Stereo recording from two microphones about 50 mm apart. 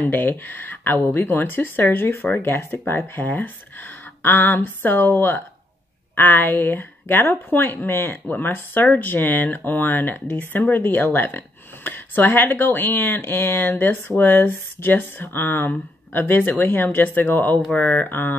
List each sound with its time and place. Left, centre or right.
0.0 s speech: left
3.2 s speech: left